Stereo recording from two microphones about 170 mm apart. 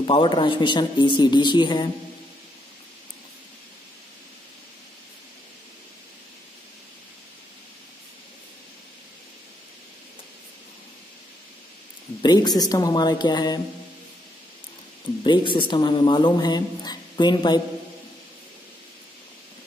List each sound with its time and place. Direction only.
0.0 s a woman's voice: 30° left (ahead or behind)
12.2 s a woman's voice: 25° left (ahead or behind)
15.2 s a woman's voice: 30° left (ahead or behind)